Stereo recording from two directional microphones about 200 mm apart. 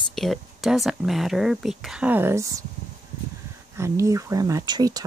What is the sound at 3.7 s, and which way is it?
Speech, 15° right (ahead or behind).